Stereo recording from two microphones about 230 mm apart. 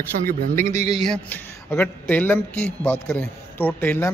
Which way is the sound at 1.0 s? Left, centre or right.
Centre.